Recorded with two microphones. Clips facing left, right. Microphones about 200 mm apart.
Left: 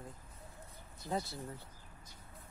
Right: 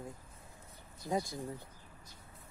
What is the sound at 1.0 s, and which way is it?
Speech, 15° right (ahead or behind).